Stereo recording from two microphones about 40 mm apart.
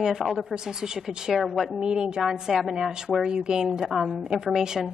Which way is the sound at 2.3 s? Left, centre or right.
Centre.